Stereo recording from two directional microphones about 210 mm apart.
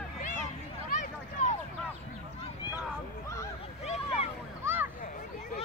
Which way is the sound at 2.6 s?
20° left (ahead or behind).